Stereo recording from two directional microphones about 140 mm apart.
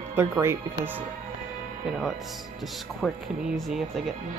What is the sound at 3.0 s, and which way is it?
Speech, centre (ahead or behind).